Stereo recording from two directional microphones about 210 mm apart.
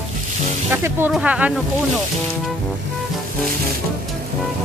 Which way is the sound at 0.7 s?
10° right (ahead or behind).